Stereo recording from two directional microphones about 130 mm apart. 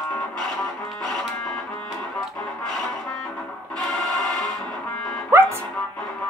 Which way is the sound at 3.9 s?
Centre (ahead or behind).